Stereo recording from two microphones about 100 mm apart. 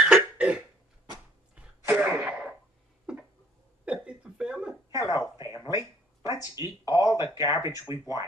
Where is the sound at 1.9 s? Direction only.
15° right (ahead or behind).